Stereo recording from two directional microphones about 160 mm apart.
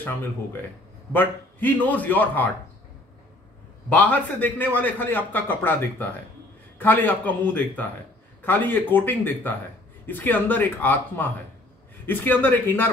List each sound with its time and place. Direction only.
1.1 s a man's voice: 10° left (ahead or behind)
3.9 s a man's voice: 10° left (ahead or behind)